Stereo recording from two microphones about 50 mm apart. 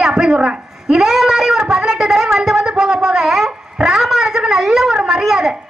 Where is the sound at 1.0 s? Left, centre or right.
Centre.